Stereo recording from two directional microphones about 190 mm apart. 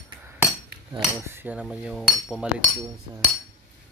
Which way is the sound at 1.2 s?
10° right (ahead or behind).